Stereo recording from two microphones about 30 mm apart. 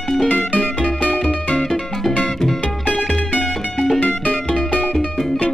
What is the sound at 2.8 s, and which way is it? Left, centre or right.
Music, left.